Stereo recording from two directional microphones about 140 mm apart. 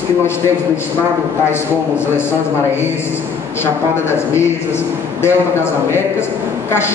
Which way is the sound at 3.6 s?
15° left (ahead or behind).